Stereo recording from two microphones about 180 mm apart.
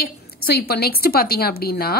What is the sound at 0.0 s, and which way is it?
A woman's voice, 60° left (ahead or behind).